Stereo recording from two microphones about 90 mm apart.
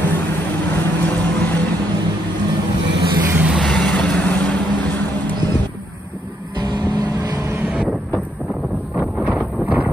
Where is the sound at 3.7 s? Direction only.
10° left (ahead or behind).